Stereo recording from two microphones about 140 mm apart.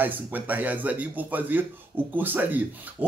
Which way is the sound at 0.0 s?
15° right (ahead or behind).